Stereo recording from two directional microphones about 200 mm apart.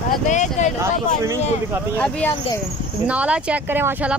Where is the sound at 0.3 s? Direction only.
35° left (ahead or behind).